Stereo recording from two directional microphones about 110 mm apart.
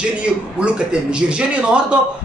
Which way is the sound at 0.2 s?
10° right (ahead or behind).